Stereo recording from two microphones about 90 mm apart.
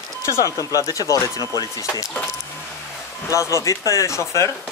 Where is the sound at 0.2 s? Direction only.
35° left (ahead or behind).